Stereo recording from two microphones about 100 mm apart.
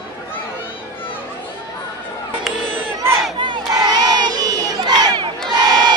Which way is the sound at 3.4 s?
50° right (ahead or behind).